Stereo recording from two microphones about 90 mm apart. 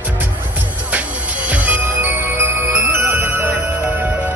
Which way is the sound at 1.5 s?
20° right (ahead or behind).